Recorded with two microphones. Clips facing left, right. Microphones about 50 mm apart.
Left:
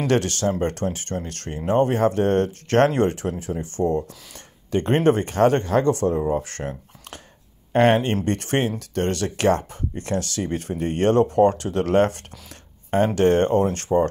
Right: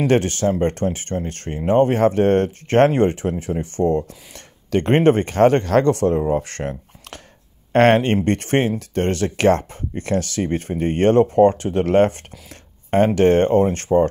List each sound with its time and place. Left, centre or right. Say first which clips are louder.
0.0 s speech: right 4 dB; right
5.6 s speech: right 3 dB; right
7.7 s speech: right 3 dB; right
8.3 s speech: right 4 dB; right